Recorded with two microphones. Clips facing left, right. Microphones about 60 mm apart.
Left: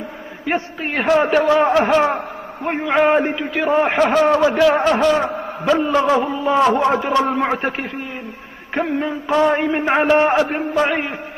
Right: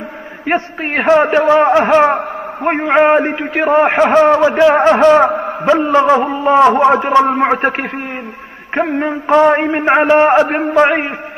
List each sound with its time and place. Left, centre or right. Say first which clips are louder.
0.5 s a man's voice: right 5 dB; right
1.0 s a man's voice: right 4 dB; right
2.1 s a man's voice: right 7 dB; right
3.1 s a man's voice: right 4 dB; right